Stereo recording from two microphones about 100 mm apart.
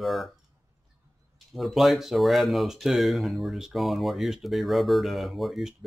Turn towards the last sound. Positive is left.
turn(degrees=0)  # may be behind; listen again after turning